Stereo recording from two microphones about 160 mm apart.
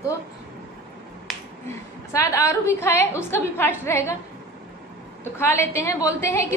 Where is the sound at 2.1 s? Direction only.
20° left (ahead or behind).